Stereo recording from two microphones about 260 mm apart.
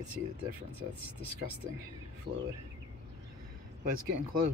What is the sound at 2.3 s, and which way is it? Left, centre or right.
Speech, right.